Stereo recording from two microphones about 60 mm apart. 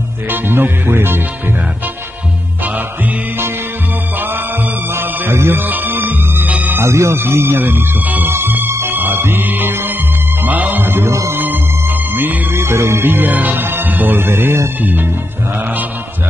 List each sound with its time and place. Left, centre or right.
0.3 s speech: right
4.9 s music: right
5.7 s music: right
6.8 s music: right
14.8 s speech: right